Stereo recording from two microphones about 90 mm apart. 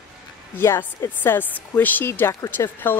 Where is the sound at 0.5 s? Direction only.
25° left (ahead or behind).